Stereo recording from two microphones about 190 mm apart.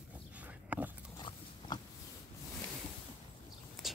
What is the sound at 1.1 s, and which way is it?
Pig, 20° left (ahead or behind).